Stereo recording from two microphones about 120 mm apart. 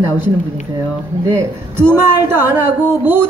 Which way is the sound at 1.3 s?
20° right (ahead or behind).